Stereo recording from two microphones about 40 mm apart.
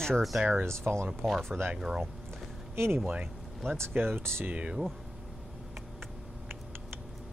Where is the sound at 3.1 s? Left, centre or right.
Right.